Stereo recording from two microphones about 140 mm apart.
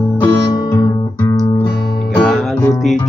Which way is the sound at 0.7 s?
25° left (ahead or behind).